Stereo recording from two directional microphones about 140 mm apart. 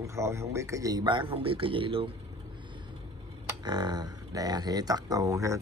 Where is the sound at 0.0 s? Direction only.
20° right (ahead or behind); by 2.0 s 40° right (ahead or behind).